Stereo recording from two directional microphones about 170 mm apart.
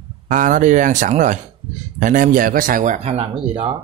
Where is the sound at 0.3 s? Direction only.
50° right (ahead or behind).